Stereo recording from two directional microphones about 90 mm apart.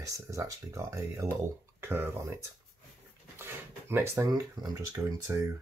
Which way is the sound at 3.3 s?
25° right (ahead or behind).